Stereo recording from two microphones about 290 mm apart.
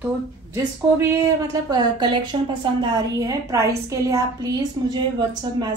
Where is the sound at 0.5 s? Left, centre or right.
Centre.